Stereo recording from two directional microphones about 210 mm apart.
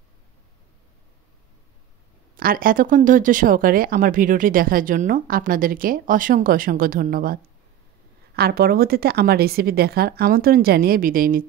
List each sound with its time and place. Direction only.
2.3 s speech: 45° right (ahead or behind)
8.4 s a woman's voice: 50° right (ahead or behind)